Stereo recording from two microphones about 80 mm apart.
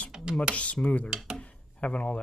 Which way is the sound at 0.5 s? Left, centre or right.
Centre.